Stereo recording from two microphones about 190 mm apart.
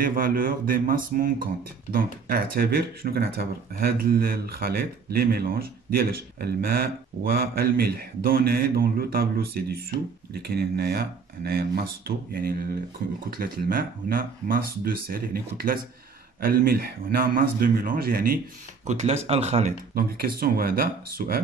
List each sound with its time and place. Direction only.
0.0 s speech: 50° right (ahead or behind)
18.9 s speech: 35° right (ahead or behind)
19.9 s speech: 50° right (ahead or behind)